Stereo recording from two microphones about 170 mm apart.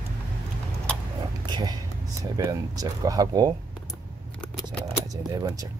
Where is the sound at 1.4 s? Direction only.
25° right (ahead or behind).